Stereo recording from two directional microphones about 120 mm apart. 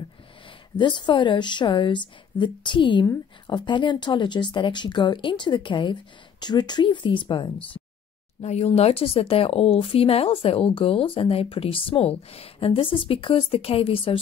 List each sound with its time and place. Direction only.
0.7 s speech: 40° left (ahead or behind)
8.4 s speech: 65° left (ahead or behind)